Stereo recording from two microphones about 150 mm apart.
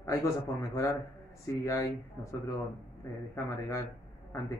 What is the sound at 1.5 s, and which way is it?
A man's voice, 20° left (ahead or behind).